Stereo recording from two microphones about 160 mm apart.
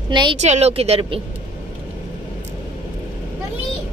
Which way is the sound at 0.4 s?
45° right (ahead or behind).